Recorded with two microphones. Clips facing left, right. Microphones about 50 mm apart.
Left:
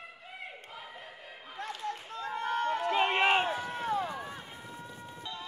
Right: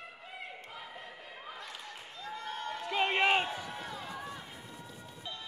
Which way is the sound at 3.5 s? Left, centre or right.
Left.